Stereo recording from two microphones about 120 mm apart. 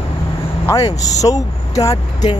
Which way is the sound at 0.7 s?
30° left (ahead or behind).